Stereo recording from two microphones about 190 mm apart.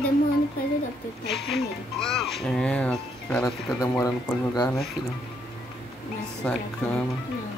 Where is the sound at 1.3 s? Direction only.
Centre (ahead or behind); by 4.7 s 20° left (ahead or behind).